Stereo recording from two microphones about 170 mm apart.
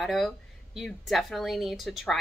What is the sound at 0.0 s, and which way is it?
A woman's voice, centre (ahead or behind).